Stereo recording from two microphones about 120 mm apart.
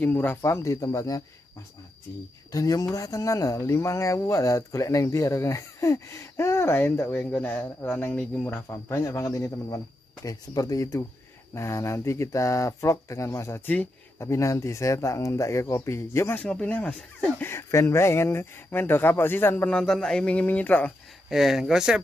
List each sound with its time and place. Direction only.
0.0 s speech: 15° left (ahead or behind)
2.5 s speech: 30° left (ahead or behind); by 20.9 s 10° left (ahead or behind)
21.3 s speech: 5° right (ahead or behind)